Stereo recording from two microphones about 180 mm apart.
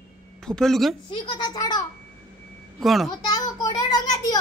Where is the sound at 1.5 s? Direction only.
20° left (ahead or behind).